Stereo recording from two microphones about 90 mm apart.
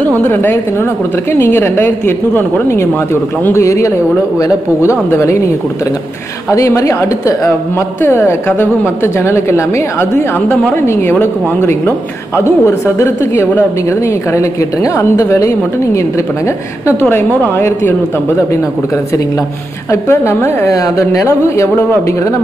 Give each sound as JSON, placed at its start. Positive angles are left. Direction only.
{"t": 0.3, "sound": "a woman's voice", "side_deg": 25}
{"t": 5.1, "sound": "a woman's voice", "side_deg": 30}
{"t": 6.5, "sound": "a woman's voice", "side_deg": 35}
{"t": 19.9, "sound": "a woman's voice", "side_deg": 30}